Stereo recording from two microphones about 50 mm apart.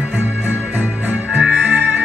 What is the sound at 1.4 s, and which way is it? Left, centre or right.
Music, right.